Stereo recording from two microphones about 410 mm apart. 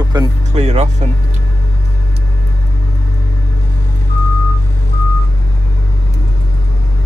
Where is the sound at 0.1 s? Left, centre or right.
Centre.